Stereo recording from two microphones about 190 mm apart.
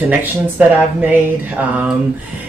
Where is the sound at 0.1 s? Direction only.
10° right (ahead or behind).